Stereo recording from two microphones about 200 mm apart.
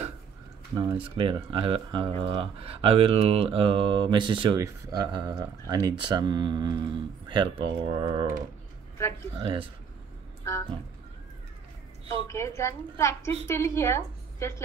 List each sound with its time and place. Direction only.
0.7 s speech: 25° right (ahead or behind)
9.4 s speech: 25° right (ahead or behind)
10.4 s speech: 15° left (ahead or behind)
12.3 s a woman's voice: 15° left (ahead or behind)